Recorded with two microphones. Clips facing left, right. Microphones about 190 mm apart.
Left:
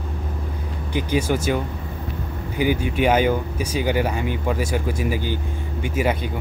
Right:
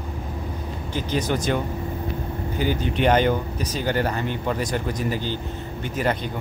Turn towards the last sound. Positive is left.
turn(degrees=10)  # may be behind; listen again after turning